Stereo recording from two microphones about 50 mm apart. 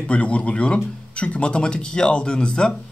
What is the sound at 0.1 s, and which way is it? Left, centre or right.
Speech, left.